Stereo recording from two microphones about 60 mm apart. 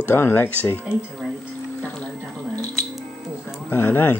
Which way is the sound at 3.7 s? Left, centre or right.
Left.